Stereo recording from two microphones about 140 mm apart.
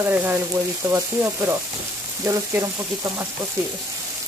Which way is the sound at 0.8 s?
20° right (ahead or behind).